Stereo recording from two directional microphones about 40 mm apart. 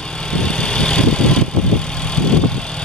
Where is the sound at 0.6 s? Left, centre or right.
Left.